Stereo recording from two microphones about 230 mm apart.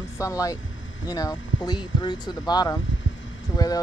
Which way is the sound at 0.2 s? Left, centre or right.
Centre.